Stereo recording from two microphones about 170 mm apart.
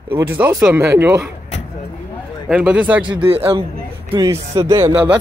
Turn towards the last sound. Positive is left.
turn(degrees=-10)  # may be behind; listen again after turning